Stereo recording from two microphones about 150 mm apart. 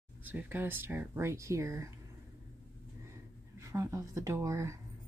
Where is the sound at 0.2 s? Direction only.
10° right (ahead or behind).